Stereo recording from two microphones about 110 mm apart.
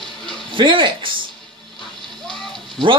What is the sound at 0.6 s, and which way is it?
Speech, 45° right (ahead or behind).